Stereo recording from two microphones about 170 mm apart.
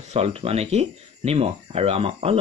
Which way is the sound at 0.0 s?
40° right (ahead or behind).